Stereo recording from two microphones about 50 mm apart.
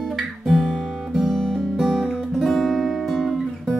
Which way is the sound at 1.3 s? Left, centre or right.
Centre.